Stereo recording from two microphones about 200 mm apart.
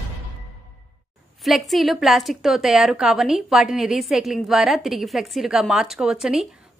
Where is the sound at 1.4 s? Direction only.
Centre (ahead or behind).